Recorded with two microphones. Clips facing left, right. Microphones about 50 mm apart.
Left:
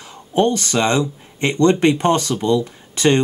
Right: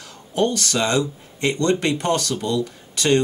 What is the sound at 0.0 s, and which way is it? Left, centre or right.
Speech, left.